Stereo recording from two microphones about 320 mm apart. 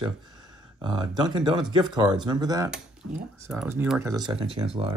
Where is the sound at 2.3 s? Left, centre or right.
Centre.